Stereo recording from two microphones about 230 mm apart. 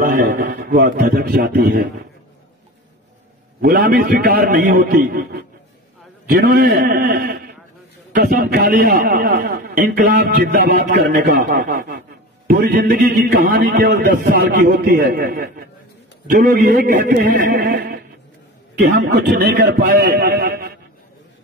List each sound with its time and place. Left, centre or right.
0.0 s a man's voice: right
3.6 s a man's voice: right